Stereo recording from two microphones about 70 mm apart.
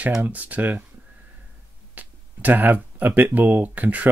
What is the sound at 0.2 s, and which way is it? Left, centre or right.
Speech, right.